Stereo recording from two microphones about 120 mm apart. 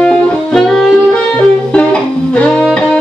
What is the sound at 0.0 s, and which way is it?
Music, 10° left (ahead or behind).